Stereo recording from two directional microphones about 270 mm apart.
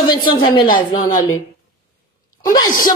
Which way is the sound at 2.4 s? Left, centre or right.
Centre.